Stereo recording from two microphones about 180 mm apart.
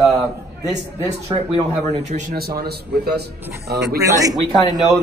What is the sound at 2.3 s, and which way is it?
Speech, 60° right (ahead or behind).